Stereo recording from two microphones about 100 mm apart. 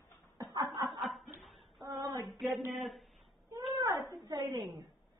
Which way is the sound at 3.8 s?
35° right (ahead or behind).